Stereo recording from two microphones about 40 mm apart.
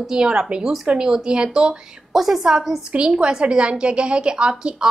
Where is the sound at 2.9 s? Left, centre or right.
Right.